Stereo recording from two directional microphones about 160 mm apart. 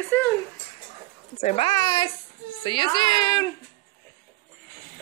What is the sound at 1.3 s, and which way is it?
Speech, 40° left (ahead or behind).